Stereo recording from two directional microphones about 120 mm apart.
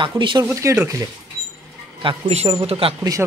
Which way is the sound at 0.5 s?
25° right (ahead or behind).